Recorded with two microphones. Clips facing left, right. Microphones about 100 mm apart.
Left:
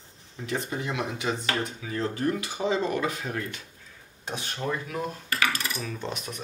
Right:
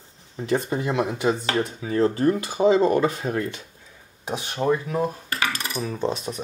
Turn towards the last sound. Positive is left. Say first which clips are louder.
# right 8 dB
turn(degrees=-30)  # may be behind; listen again after turning